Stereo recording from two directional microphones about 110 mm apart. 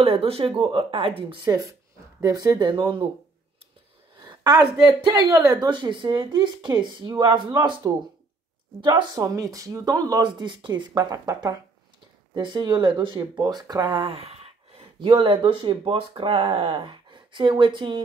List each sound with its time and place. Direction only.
0.0 s speech: 60° right (ahead or behind)
1.4 s speech: 35° right (ahead or behind); by 3.1 s 50° right (ahead or behind)
4.2 s a sound: 35° right (ahead or behind)
5.0 s speech: 35° right (ahead or behind)
9.2 s speech: 30° right (ahead or behind)
12.4 s speech: 45° right (ahead or behind)